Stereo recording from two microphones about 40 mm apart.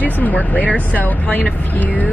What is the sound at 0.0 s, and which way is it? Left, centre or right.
Speech, left.